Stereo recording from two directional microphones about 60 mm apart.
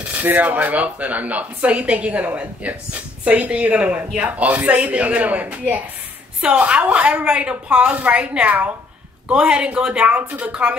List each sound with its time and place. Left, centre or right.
0.1 s a woman's voice: right